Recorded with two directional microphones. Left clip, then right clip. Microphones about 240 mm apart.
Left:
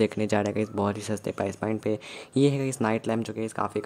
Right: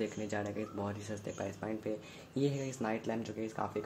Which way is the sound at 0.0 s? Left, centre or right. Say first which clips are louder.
Left 13 dB; left.